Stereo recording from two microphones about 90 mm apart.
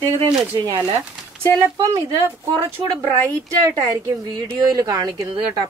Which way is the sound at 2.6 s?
45° right (ahead or behind).